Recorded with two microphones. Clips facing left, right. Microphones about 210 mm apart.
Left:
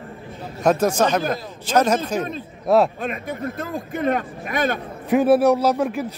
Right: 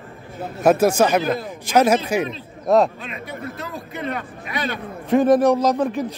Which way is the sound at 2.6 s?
5° left (ahead or behind).